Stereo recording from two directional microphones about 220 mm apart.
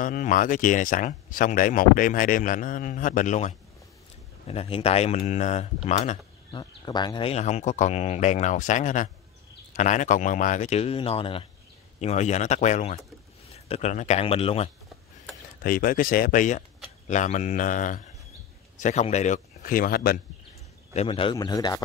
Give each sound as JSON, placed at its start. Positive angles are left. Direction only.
{"t": 0.0, "sound": "speech", "side_deg": 35}
{"t": 6.5, "sound": "speech", "side_deg": 20}
{"t": 15.6, "sound": "speech", "side_deg": 40}
{"t": 20.9, "sound": "speech", "side_deg": 25}